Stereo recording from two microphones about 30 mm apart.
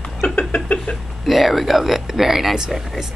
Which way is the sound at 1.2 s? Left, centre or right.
Centre.